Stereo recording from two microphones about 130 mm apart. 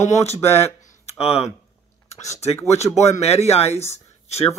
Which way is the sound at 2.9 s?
60° left (ahead or behind).